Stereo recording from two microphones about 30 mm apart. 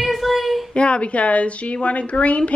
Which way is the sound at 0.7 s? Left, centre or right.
Left.